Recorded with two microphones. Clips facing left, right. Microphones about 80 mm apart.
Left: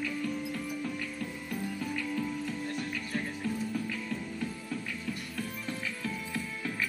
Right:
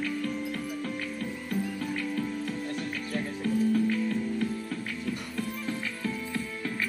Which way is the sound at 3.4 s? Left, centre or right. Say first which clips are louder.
Right 8 dB; right.